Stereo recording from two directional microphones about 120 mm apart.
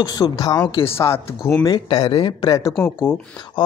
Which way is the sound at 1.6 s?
35° left (ahead or behind).